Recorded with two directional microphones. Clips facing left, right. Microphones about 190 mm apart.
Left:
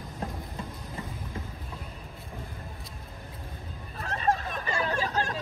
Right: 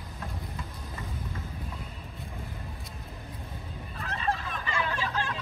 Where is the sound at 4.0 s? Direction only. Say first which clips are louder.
Left 4 dB; 45° left (ahead or behind).